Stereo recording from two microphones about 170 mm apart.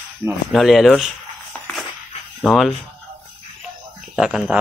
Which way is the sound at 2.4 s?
Centre (ahead or behind).